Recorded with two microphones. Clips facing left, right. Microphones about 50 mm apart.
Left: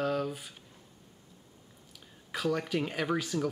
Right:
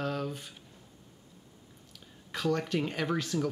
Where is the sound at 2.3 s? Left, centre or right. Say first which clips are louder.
Right 1 dB; centre.